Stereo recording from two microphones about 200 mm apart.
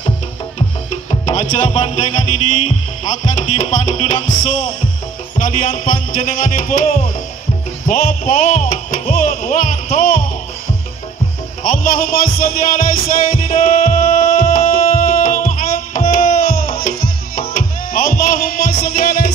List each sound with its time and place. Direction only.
1.2 s music: 35° left (ahead or behind)
11.6 s a man's voice: 45° left (ahead or behind)
13.3 s music: 45° left (ahead or behind)